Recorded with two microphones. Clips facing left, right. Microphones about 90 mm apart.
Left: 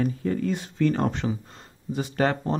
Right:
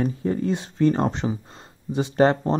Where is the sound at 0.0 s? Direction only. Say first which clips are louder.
Right 2 dB; 25° right (ahead or behind).